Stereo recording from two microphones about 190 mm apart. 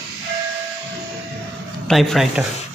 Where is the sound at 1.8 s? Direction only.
Centre (ahead or behind).